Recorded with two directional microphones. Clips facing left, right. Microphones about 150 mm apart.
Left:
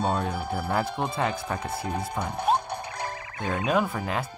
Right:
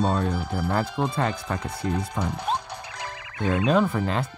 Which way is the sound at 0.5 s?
10° left (ahead or behind).